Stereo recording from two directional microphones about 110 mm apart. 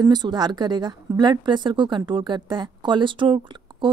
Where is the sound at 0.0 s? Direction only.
40° right (ahead or behind).